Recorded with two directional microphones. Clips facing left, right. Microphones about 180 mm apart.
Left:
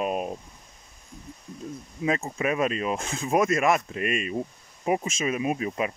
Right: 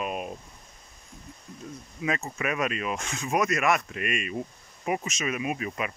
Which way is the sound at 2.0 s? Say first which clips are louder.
Left 4 dB; 30° left (ahead or behind).